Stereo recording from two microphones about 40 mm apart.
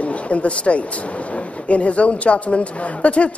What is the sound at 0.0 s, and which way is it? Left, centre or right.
Speech, left.